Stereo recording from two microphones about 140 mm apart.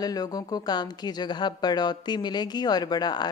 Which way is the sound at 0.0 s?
30° left (ahead or behind).